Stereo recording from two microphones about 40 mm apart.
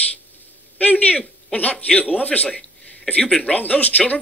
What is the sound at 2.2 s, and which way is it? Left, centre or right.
Speech, left.